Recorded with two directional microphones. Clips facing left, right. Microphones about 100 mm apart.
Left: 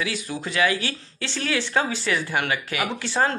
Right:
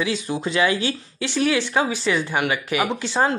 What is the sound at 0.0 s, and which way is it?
Speech, 20° right (ahead or behind).